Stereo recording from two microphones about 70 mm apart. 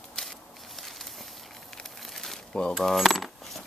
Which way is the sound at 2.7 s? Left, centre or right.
Centre.